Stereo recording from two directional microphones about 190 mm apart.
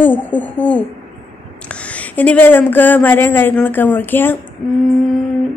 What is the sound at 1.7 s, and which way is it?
Speech, 5° left (ahead or behind).